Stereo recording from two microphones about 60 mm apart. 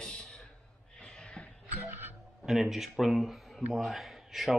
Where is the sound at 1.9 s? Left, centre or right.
Right.